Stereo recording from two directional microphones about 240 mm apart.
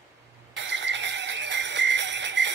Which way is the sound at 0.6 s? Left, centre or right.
Right.